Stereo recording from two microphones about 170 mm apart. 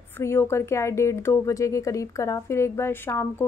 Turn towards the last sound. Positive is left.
turn(degrees=15)  # may be behind; listen again after turning